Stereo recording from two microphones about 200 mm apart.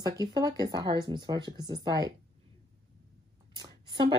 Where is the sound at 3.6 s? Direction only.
25° right (ahead or behind).